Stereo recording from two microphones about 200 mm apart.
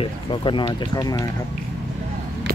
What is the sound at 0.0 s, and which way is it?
Speech, 25° left (ahead or behind).